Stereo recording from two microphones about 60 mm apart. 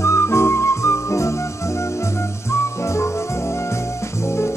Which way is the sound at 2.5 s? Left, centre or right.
Left.